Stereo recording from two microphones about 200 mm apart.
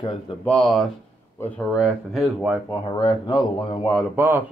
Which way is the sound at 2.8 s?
20° left (ahead or behind).